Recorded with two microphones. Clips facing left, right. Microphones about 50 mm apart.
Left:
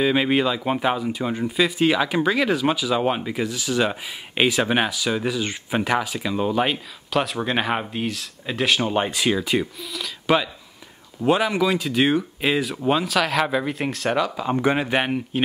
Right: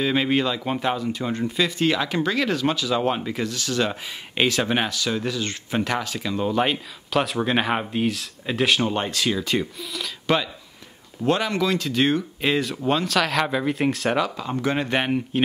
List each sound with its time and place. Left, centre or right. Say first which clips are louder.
0.0 s speech: left 2 dB; centre
9.8 s speech: even; centre
14.4 s speech: left 4 dB; centre
14.8 s speech: left 1 dB; centre